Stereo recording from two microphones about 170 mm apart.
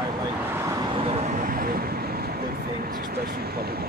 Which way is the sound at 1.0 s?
45° right (ahead or behind).